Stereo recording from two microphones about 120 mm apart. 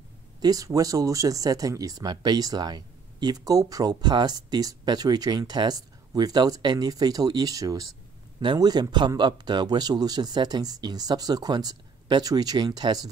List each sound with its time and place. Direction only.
0.4 s speech: 30° right (ahead or behind)